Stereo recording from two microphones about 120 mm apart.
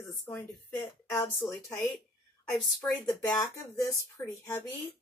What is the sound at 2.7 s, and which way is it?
Speech, 30° left (ahead or behind).